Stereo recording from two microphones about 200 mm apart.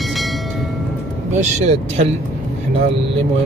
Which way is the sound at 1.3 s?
35° right (ahead or behind).